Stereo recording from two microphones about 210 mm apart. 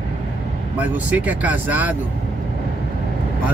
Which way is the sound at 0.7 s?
5° right (ahead or behind).